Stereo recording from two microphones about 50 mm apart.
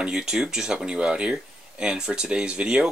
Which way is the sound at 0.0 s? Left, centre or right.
Centre.